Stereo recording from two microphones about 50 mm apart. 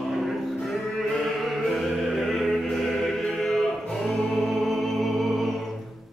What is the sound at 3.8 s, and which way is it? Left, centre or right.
Music, centre.